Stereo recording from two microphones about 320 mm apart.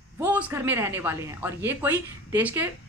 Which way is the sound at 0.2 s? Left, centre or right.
Centre.